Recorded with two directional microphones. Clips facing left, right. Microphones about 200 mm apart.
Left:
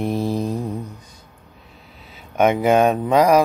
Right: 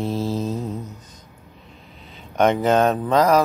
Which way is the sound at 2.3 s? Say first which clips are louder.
Left 2 dB; 10° left (ahead or behind).